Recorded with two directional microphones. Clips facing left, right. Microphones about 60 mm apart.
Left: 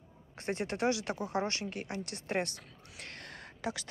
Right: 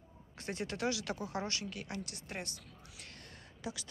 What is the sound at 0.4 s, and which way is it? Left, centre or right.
Speech, left.